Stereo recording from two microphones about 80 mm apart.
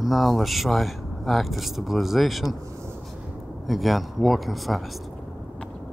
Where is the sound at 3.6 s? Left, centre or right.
Centre.